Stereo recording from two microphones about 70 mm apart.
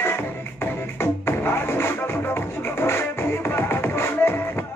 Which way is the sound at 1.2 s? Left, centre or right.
Left.